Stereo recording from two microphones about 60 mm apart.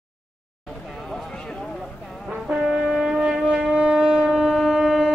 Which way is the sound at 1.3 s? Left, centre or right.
Centre.